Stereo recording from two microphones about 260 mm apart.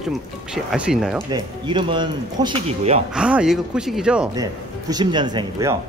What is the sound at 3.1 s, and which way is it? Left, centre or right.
Speech, centre.